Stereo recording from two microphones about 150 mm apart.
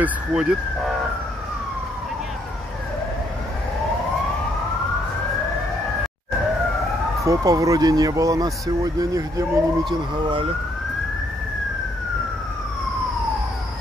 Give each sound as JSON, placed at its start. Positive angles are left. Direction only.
{"t": 0.0, "sound": "speech", "side_deg": -5}
{"t": 7.2, "sound": "speech", "side_deg": -20}